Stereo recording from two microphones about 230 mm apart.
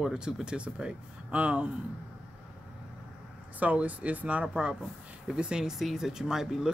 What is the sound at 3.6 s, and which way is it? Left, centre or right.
Speech, centre.